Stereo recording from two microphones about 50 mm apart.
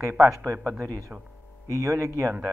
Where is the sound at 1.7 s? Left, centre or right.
Right.